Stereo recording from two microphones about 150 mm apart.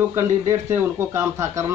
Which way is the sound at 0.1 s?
15° right (ahead or behind).